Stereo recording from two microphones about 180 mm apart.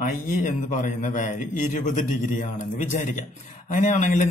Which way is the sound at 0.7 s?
45° left (ahead or behind).